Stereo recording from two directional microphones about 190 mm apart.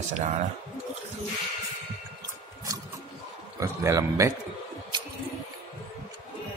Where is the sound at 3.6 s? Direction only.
15° right (ahead or behind).